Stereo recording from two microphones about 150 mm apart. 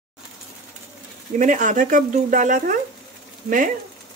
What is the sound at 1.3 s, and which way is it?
Speech, 55° right (ahead or behind).